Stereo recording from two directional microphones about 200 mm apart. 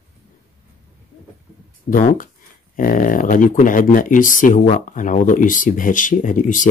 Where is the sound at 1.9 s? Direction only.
40° left (ahead or behind).